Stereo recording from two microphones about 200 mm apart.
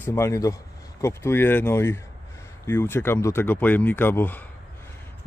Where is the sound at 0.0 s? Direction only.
15° left (ahead or behind).